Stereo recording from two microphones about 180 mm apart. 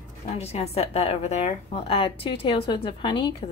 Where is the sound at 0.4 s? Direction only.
35° left (ahead or behind).